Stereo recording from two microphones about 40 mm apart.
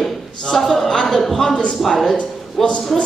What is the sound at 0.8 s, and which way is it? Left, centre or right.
Speech, centre.